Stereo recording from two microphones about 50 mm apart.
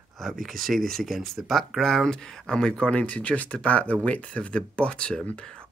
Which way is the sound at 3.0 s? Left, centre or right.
Left.